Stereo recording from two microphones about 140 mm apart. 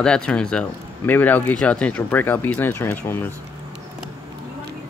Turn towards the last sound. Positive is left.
turn(degrees=15)  # may be behind; listen again after turning